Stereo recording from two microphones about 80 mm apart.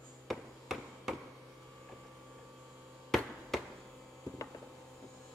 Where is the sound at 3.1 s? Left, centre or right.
Centre.